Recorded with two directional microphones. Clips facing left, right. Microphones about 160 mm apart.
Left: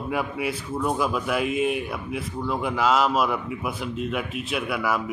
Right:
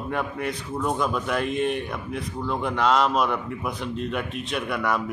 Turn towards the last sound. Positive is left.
turn(degrees=5)  # may be behind; listen again after turning